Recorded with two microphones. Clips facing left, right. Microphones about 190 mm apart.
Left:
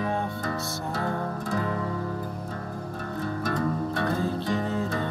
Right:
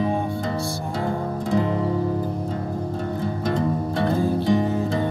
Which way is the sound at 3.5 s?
20° right (ahead or behind).